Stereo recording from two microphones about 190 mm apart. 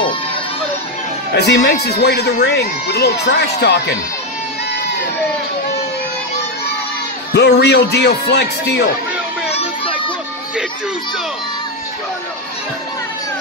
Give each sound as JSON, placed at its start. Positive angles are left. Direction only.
{"t": 1.3, "sound": "speech", "side_deg": 65}
{"t": 7.3, "sound": "speech", "side_deg": 60}
{"t": 9.5, "sound": "children playing", "side_deg": 30}